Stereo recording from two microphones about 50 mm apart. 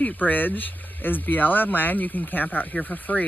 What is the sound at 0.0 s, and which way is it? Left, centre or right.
Speech, left.